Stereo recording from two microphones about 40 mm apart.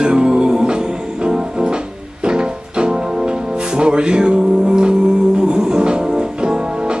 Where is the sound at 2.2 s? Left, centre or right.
Right.